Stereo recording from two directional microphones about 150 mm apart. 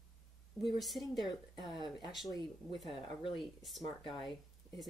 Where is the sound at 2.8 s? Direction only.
Centre (ahead or behind).